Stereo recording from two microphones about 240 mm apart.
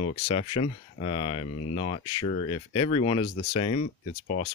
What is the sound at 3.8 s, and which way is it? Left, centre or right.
Speech, left.